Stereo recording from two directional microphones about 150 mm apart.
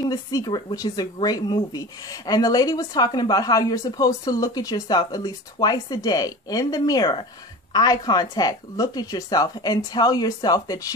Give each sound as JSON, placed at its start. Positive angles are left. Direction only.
{"t": 0.0, "sound": "speech", "side_deg": 25}